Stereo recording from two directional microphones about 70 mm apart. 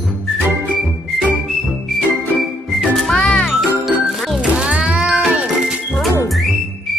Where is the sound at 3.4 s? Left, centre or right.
Centre.